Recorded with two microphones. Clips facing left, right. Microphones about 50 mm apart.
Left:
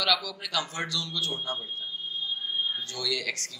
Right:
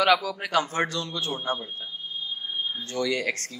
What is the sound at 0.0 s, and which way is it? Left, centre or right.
A man's voice, right.